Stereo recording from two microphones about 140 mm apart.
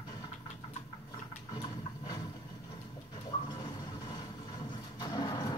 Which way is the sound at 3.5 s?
30° left (ahead or behind).